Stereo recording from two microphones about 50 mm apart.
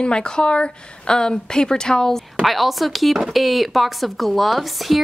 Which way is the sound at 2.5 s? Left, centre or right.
Centre.